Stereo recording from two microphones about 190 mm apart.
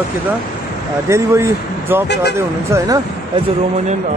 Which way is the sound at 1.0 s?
15° right (ahead or behind).